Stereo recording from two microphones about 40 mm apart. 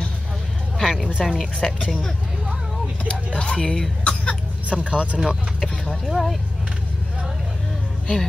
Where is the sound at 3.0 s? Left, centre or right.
Left.